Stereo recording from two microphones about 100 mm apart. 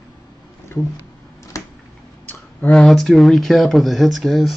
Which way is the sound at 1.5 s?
30° left (ahead or behind).